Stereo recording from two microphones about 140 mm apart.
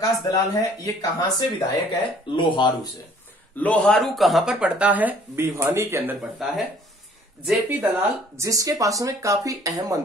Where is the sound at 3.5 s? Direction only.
10° left (ahead or behind); by 6.1 s 15° right (ahead or behind).